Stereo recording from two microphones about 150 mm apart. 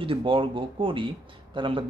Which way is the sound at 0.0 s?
35° right (ahead or behind).